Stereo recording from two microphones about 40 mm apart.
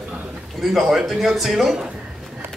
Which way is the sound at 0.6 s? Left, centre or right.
Centre.